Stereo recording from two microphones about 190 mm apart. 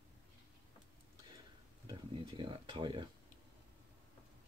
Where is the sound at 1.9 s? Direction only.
25° right (ahead or behind).